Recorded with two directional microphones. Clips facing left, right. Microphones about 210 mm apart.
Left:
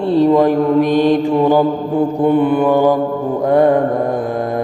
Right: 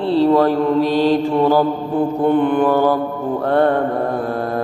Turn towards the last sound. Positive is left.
turn(degrees=10)  # may be behind; listen again after turning